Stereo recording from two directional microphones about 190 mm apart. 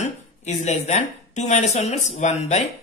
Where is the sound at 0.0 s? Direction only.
35° left (ahead or behind).